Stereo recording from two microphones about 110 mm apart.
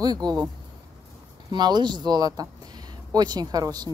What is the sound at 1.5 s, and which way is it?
Speech, 40° right (ahead or behind).